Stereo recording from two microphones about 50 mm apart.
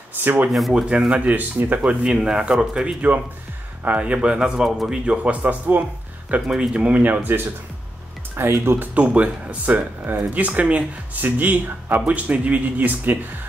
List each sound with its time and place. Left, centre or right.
0.2 s speech: right
0.5 s speech: centre
0.8 s speech: right
2.1 s speech: centre
3.1 s speech: right
3.8 s speech: right
6.4 s speech: centre
6.7 s speech: right
7.0 s speech: right
8.9 s speech: right